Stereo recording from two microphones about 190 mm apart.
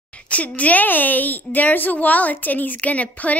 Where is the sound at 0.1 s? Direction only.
5° left (ahead or behind).